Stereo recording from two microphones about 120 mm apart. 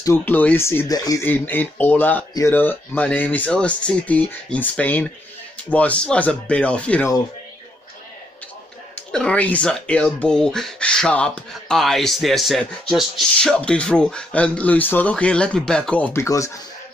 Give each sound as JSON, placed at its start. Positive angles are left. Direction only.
{"t": 0.0, "sound": "speech", "side_deg": 20}
{"t": 1.2, "sound": "speech", "side_deg": 15}
{"t": 9.1, "sound": "speech", "side_deg": 10}
{"t": 16.1, "sound": "speech", "side_deg": 25}